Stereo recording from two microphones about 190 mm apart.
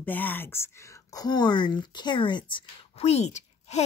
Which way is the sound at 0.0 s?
10° left (ahead or behind).